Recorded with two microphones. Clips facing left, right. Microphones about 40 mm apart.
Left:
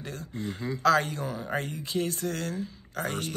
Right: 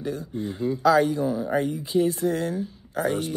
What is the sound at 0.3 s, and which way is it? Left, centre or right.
Speech, left.